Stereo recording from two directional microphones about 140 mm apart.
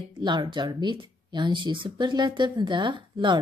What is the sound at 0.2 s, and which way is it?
Speech, 35° right (ahead or behind).